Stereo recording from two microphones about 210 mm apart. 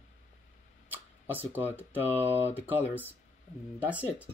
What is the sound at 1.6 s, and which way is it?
Speech, 10° left (ahead or behind).